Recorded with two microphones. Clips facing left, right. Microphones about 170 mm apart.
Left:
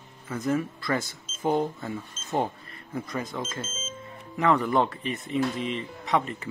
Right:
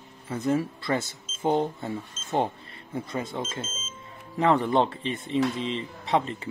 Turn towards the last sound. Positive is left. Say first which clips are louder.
# right 1 dB
turn(degrees=-30)  # may be behind; listen again after turning